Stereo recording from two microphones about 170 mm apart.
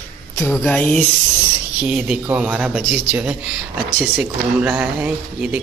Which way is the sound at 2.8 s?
Centre (ahead or behind).